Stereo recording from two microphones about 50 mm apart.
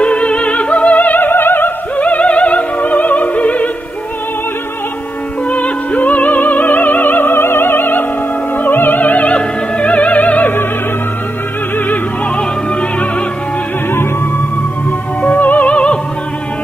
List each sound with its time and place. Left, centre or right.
0.0 s opera: left
2.0 s opera: left
5.5 s music: left
15.2 s music: left